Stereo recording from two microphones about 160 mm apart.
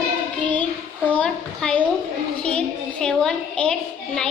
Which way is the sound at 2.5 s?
5° left (ahead or behind).